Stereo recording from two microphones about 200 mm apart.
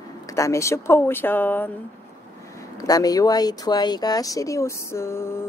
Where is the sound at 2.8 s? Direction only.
20° left (ahead or behind).